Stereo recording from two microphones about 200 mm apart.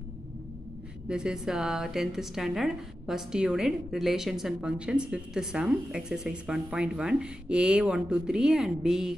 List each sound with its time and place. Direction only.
1.0 s a woman's voice: 5° right (ahead or behind)